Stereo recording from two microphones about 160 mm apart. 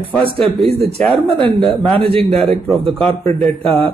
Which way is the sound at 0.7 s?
40° right (ahead or behind).